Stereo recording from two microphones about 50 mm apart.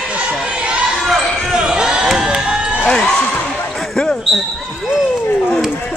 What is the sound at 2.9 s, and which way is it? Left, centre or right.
Speech, centre.